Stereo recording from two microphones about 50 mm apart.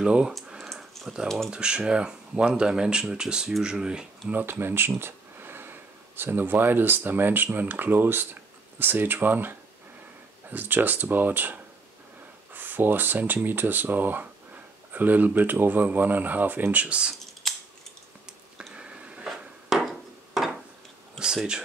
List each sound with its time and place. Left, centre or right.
0.0 s speech: centre
1.0 s typing: centre
1.5 s speech: centre
4.3 s speech: right
17.3 s scissors: centre
18.7 s a sound: right
19.2 s a sound: centre
21.2 s speech: centre